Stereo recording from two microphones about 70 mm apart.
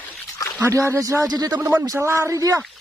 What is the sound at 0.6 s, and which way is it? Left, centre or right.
Speech, right.